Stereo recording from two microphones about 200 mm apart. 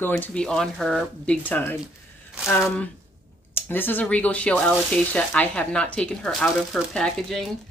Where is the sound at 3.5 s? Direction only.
10° left (ahead or behind).